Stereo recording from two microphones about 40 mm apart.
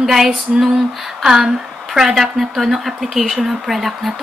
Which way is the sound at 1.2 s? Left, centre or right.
Centre.